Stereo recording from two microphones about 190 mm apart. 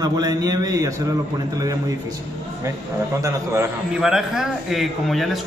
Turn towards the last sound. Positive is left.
turn(degrees=0)  # may be behind; listen again after turning